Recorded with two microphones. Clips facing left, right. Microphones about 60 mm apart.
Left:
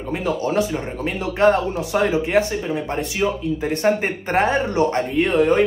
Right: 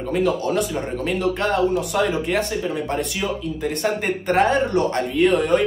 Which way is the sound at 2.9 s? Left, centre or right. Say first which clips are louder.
Left 2 dB; left.